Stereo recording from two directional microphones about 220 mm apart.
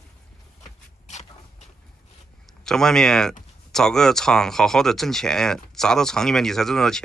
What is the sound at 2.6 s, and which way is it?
Speech, centre (ahead or behind).